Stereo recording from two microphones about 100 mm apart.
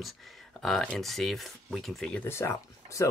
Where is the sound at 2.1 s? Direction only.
25° left (ahead or behind).